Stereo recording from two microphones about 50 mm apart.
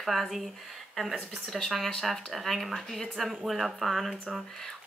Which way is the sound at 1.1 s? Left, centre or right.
Centre.